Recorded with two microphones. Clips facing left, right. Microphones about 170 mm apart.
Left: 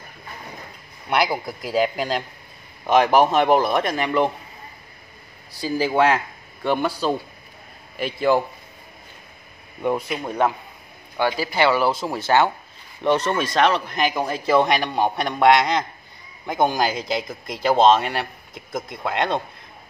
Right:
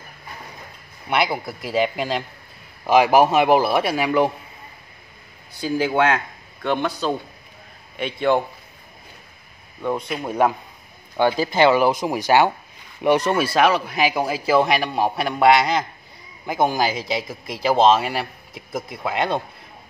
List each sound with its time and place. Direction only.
1.0 s speech: centre (ahead or behind)
5.6 s speech: centre (ahead or behind)
9.8 s speech: 5° left (ahead or behind)
11.1 s speech: 20° right (ahead or behind)